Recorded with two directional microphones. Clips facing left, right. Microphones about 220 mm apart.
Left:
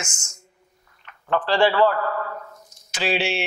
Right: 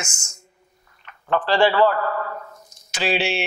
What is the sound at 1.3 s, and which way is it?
A man's voice, 15° right (ahead or behind).